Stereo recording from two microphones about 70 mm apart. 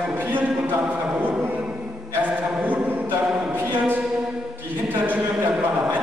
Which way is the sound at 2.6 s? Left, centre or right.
Right.